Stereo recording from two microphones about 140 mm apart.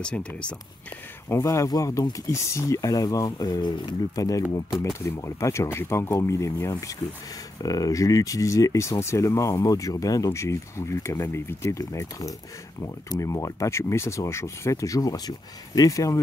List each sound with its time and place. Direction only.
0.0 s speech: 5° left (ahead or behind)
1.3 s speech: 20° left (ahead or behind)
4.6 s speech: centre (ahead or behind)
5.0 s speech: 20° left (ahead or behind)